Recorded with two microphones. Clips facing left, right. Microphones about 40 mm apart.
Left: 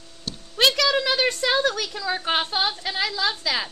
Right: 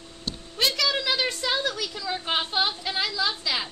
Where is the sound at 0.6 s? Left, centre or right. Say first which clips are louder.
Left 5 dB; left.